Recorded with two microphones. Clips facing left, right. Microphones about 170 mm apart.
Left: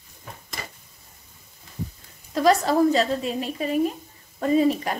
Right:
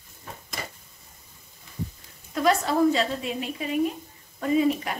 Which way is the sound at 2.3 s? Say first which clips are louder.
Left 4 dB; 35° left (ahead or behind).